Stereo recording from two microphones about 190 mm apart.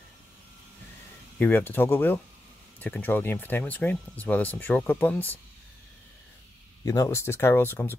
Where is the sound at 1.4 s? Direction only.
10° left (ahead or behind).